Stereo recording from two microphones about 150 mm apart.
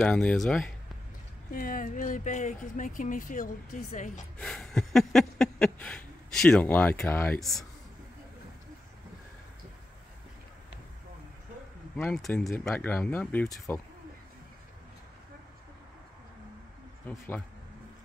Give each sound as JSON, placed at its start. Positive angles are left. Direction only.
{"t": 0.0, "sound": "speech", "side_deg": 5}
{"t": 1.5, "sound": "speech", "side_deg": 65}
{"t": 4.4, "sound": "a sound", "side_deg": 5}
{"t": 7.3, "sound": "speech", "side_deg": 0}
{"t": 12.0, "sound": "speech", "side_deg": 5}